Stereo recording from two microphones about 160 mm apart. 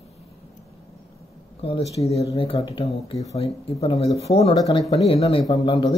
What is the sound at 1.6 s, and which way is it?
Speech, 35° left (ahead or behind).